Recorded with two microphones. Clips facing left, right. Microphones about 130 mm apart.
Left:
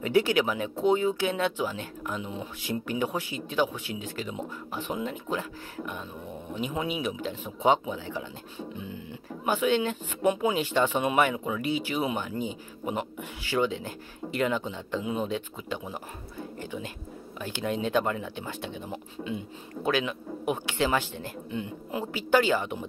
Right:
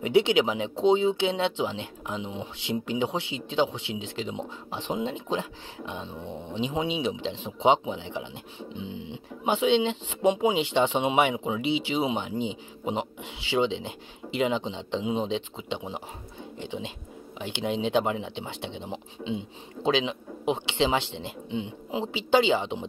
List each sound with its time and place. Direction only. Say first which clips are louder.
0.0 s speech: right 2 dB; 20° right (ahead or behind)
13.5 s speech: right 2 dB; 20° right (ahead or behind)